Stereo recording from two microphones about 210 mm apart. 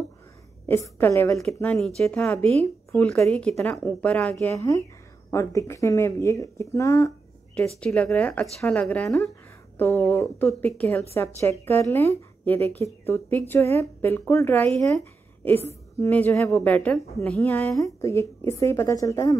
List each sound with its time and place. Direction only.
0.7 s speech: 10° left (ahead or behind)
2.4 s speech: 30° right (ahead or behind)
2.9 s speech: 5° left (ahead or behind)
16.0 s speech: 10° left (ahead or behind)